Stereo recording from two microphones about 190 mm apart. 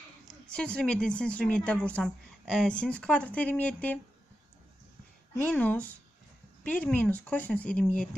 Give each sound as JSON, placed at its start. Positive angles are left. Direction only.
{"t": 0.3, "sound": "a woman's voice", "side_deg": 5}
{"t": 5.3, "sound": "speech", "side_deg": 10}